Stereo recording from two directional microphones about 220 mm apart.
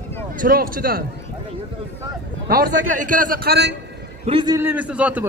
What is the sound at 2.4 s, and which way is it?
A man's voice, 45° right (ahead or behind).